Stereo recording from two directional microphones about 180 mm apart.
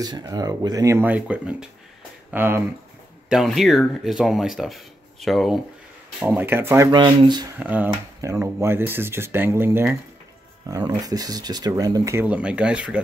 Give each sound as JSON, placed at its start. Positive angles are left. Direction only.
{"t": 0.0, "sound": "speech", "side_deg": -20}
{"t": 3.3, "sound": "speech", "side_deg": 0}
{"t": 7.5, "sound": "speech", "side_deg": -10}